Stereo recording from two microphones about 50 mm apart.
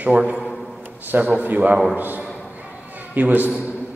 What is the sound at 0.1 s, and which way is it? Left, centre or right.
Speech, right.